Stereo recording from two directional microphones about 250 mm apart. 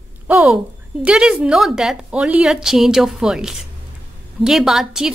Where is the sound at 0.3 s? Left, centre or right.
Centre.